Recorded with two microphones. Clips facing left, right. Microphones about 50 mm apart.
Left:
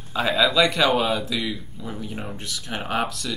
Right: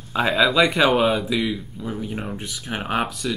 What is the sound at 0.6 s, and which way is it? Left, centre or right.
Speech, centre.